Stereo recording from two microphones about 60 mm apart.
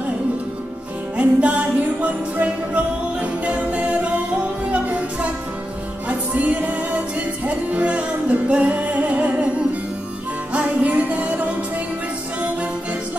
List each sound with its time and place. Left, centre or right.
1.1 s music: right
10.5 s music: right